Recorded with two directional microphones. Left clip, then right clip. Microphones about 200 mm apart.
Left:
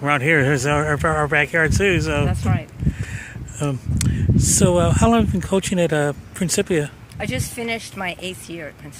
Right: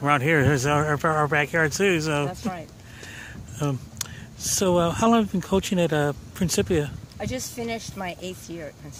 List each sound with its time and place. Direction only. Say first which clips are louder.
0.0 s speech: left 3 dB; 10° right (ahead or behind)